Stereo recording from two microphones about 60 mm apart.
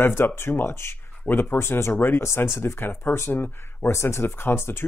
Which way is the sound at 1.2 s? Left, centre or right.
Left.